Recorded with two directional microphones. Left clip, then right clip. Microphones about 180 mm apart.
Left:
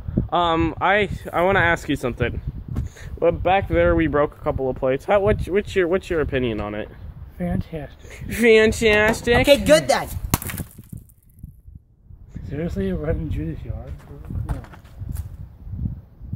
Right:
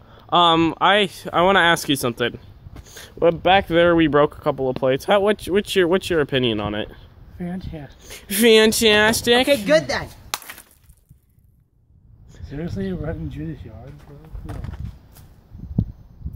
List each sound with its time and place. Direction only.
0.3 s speech: 55° right (ahead or behind)
7.3 s speech: 25° left (ahead or behind)
8.1 s speech: 55° right (ahead or behind)
9.5 s a woman's voice: 45° left (ahead or behind)
12.4 s speech: 10° left (ahead or behind)